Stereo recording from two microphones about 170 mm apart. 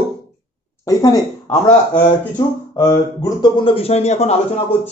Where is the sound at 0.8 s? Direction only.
20° left (ahead or behind).